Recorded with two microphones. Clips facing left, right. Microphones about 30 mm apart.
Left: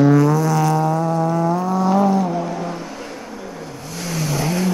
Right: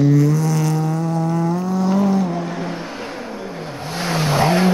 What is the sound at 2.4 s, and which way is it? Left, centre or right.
Vehicle, right.